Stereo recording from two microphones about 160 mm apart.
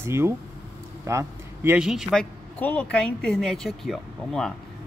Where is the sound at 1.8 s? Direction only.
5° right (ahead or behind).